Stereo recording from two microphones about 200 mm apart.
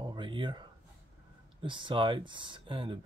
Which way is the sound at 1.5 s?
25° right (ahead or behind).